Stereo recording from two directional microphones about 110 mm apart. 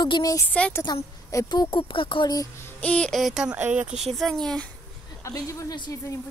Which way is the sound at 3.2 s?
5° right (ahead or behind).